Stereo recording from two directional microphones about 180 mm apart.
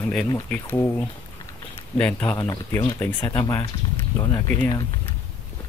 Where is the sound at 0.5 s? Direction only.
10° left (ahead or behind).